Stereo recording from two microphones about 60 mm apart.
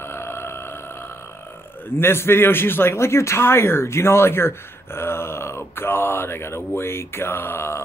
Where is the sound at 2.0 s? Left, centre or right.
Left.